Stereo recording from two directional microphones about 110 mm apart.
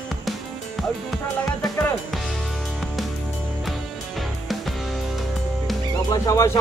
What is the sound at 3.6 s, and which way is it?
Music, centre (ahead or behind).